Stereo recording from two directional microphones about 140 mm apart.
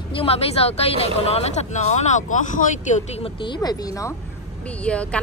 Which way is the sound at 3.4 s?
30° left (ahead or behind).